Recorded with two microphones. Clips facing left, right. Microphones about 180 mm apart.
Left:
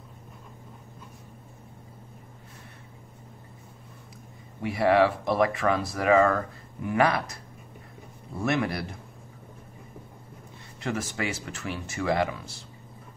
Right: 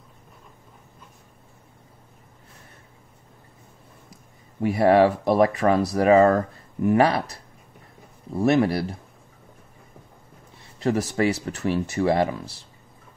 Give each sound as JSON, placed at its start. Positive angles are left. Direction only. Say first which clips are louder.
{"t": 4.6, "sound": "speech", "louder": "right 5 dB", "side_deg": -40}
{"t": 8.4, "sound": "speech", "louder": "right 7 dB", "side_deg": -35}
{"t": 10.8, "sound": "speech", "louder": "right 8 dB", "side_deg": -35}